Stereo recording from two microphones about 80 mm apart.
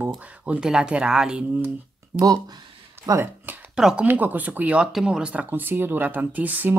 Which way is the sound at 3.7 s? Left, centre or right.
Centre.